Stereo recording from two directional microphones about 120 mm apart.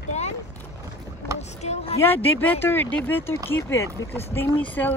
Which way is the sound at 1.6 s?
65° left (ahead or behind).